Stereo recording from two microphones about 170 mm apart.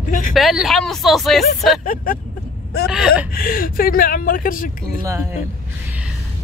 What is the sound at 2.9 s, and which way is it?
Speech, 5° right (ahead or behind).